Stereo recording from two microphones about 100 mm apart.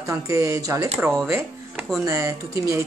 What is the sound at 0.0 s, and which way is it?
Speech, 30° right (ahead or behind).